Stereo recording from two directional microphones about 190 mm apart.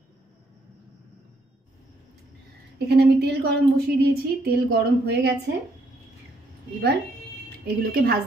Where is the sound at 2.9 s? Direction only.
55° right (ahead or behind).